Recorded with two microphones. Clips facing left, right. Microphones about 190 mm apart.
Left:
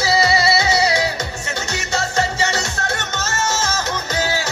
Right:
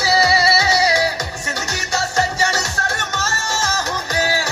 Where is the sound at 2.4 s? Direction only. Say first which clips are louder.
Even; 20° left (ahead or behind).